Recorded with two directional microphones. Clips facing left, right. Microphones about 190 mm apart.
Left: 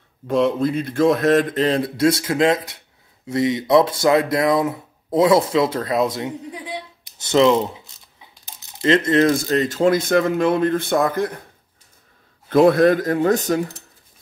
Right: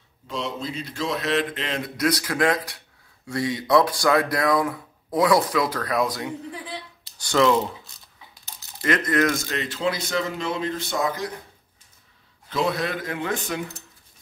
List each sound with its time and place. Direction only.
0.3 s speech: 55° left (ahead or behind)
12.4 s speech: 50° left (ahead or behind)